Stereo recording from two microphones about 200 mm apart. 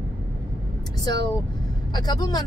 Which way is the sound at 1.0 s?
20° left (ahead or behind).